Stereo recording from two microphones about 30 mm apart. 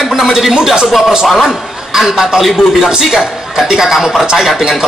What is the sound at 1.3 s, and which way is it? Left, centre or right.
Speech, centre.